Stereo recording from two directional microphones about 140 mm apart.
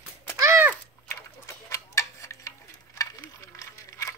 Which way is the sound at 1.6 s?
20° left (ahead or behind).